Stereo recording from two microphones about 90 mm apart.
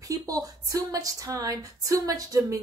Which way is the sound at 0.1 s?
40° right (ahead or behind).